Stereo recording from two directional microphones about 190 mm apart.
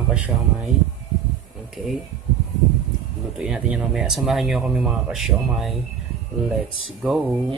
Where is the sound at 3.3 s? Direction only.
5° right (ahead or behind).